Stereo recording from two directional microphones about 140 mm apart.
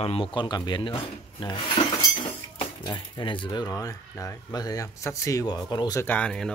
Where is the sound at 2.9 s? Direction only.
35° left (ahead or behind).